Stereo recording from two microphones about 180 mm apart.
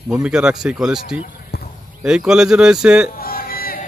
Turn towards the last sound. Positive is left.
turn(degrees=55)  # may be behind; listen again after turning